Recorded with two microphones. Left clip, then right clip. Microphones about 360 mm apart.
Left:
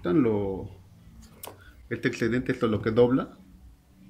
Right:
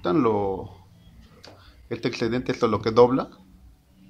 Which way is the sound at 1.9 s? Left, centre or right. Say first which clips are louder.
Right 1 dB; centre.